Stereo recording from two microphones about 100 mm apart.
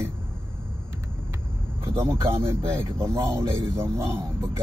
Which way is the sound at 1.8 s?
25° right (ahead or behind).